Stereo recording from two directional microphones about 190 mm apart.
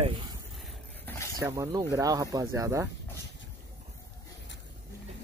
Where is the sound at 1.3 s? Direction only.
15° right (ahead or behind).